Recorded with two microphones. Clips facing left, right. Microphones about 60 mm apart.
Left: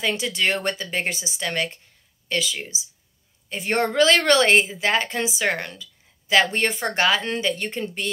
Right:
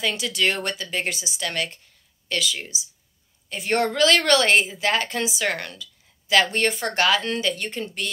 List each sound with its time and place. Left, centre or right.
0.0 s a woman's voice: left